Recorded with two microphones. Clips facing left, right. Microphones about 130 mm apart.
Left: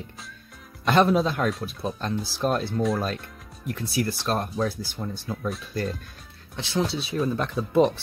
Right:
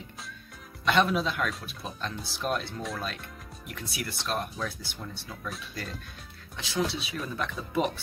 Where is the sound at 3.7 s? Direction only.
35° left (ahead or behind).